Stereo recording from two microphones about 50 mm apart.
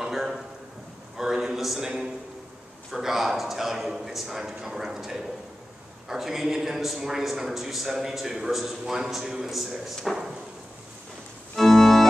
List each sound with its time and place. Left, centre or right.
0.0 s a sound: centre
1.9 s a man's voice: centre
2.9 s a man's voice: centre
11.5 s organ: centre